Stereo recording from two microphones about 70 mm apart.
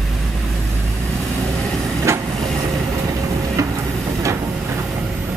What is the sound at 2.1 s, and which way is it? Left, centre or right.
Vehicle, right.